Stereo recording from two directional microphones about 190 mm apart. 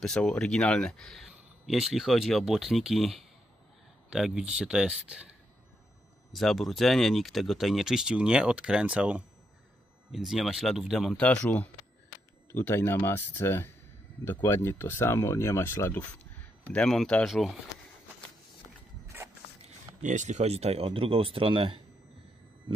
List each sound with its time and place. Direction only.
0.0 s speech: 5° left (ahead or behind)
6.3 s speech: centre (ahead or behind)
20.0 s speech: 40° right (ahead or behind)